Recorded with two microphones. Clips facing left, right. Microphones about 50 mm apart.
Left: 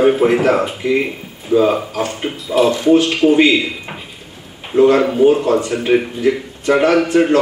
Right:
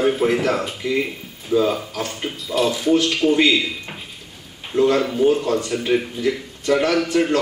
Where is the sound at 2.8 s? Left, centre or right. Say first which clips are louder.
Left 4 dB; centre.